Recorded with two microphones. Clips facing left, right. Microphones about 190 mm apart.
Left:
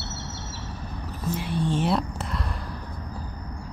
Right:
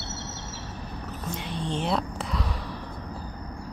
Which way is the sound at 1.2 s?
5° left (ahead or behind).